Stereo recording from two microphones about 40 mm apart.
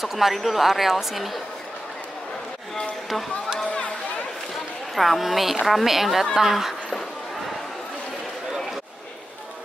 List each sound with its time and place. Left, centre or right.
0.0 s a woman's voice: centre
3.6 s a sound: left
4.9 s a woman's voice: centre